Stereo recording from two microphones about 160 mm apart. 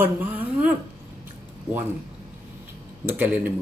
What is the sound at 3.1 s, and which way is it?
Speech, 10° right (ahead or behind).